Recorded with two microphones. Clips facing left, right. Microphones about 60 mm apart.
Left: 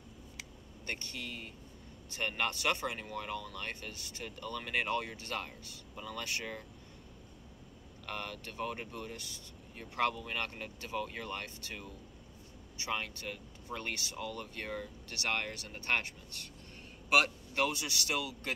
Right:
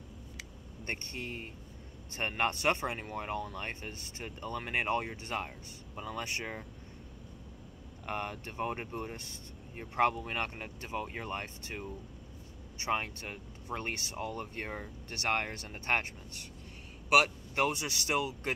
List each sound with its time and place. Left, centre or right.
0.8 s speech: right
8.1 s speech: right